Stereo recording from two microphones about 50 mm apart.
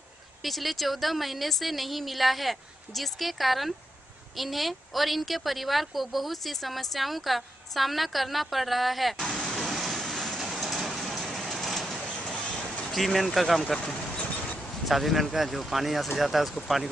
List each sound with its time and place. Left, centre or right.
0.4 s a woman's voice: centre
9.1 s vehicle: centre
12.9 s a woman's voice: centre
13.7 s vehicle: left
14.9 s a woman's voice: centre